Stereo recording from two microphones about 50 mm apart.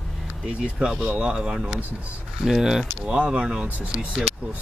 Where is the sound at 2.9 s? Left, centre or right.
Right.